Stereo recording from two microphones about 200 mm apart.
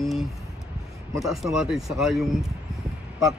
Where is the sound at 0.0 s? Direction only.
Centre (ahead or behind).